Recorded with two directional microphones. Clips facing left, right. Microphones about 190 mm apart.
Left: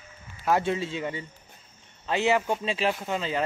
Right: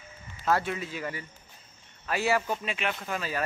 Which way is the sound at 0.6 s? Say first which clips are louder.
Left 5 dB; 25° left (ahead or behind).